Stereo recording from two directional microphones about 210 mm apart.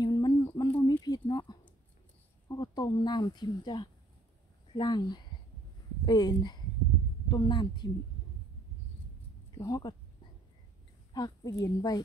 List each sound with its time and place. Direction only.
0.0 s a sound: 20° left (ahead or behind)
2.4 s speech: 15° left (ahead or behind)
9.6 s speech: 20° left (ahead or behind)
11.1 s a woman's voice: 20° left (ahead or behind)